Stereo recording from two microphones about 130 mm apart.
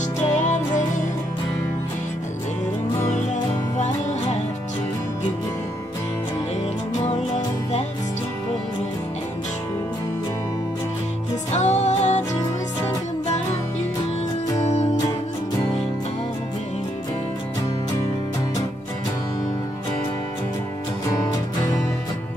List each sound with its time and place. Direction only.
0.3 s music: 65° left (ahead or behind)
11.5 s music: 60° left (ahead or behind)
14.6 s music: 60° left (ahead or behind)
21.1 s music: 25° left (ahead or behind)